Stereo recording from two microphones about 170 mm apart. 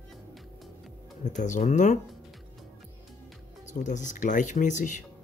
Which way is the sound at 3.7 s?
45° left (ahead or behind).